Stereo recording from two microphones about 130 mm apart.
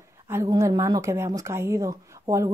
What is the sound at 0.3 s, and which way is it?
Speech, 20° right (ahead or behind).